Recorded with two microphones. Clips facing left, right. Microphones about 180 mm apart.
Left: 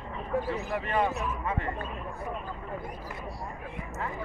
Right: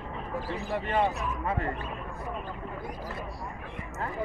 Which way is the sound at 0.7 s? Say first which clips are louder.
Right 3 dB; 30° right (ahead or behind).